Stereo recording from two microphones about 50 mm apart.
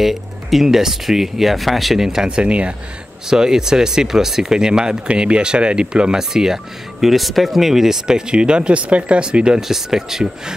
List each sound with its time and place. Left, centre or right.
0.0 s speech: centre
2.2 s speech: right
3.3 s speech: centre
9.6 s speech: centre